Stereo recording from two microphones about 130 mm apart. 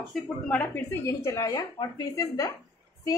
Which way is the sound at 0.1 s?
10° left (ahead or behind).